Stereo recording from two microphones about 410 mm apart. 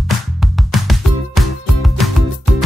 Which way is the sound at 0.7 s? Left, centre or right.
Centre.